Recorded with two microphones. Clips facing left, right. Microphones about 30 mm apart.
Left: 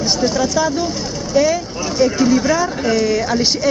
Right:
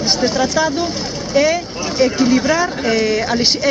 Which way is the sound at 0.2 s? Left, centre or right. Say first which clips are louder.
Even; right.